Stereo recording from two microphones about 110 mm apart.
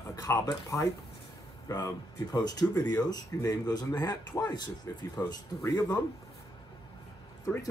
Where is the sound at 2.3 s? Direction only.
35° left (ahead or behind).